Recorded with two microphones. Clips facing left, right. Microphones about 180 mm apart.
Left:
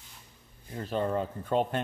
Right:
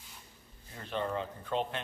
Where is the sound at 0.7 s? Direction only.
40° left (ahead or behind).